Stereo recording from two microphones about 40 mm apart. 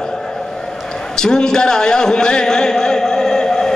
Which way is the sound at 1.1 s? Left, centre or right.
Centre.